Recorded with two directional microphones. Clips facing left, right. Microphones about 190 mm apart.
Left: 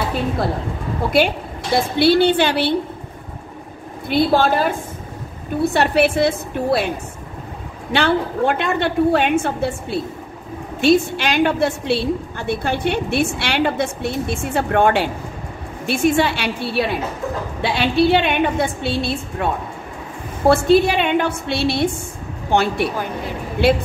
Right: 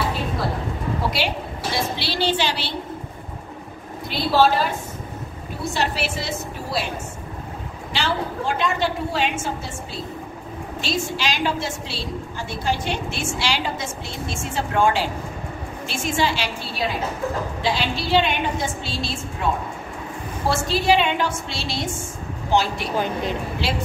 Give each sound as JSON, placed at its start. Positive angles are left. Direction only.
{"t": 1.1, "sound": "a woman's voice", "side_deg": 55}
{"t": 4.1, "sound": "a woman's voice", "side_deg": 50}
{"t": 7.9, "sound": "a woman's voice", "side_deg": 60}